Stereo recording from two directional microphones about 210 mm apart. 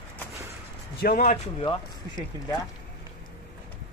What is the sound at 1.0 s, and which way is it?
Speech, 40° left (ahead or behind).